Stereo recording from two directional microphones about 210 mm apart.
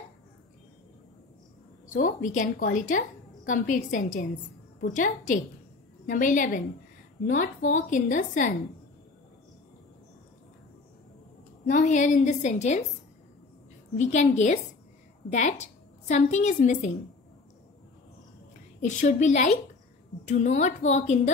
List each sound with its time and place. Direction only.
1.9 s a woman's voice: 40° left (ahead or behind)
11.6 s a woman's voice: 35° left (ahead or behind)
13.9 s a woman's voice: 35° left (ahead or behind)
18.8 s a woman's voice: 35° left (ahead or behind)